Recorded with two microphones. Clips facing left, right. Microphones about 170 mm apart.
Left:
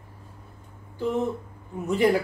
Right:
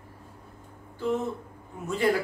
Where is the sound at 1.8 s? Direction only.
15° left (ahead or behind).